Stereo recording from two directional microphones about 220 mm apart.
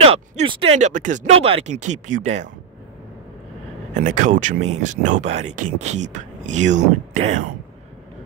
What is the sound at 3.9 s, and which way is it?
Speech, 35° right (ahead or behind).